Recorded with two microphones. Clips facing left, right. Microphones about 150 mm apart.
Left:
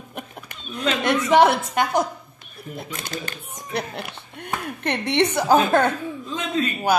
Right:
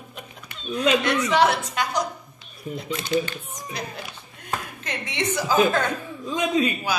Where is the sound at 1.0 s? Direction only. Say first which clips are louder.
Left 4 dB; 55° left (ahead or behind).